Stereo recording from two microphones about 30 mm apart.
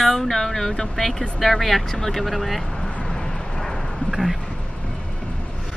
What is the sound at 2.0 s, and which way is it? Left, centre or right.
Speech, centre.